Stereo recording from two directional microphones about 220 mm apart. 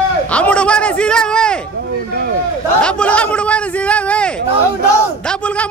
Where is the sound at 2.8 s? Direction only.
5° left (ahead or behind).